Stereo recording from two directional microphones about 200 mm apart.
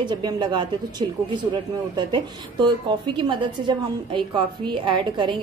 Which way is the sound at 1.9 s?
25° right (ahead or behind).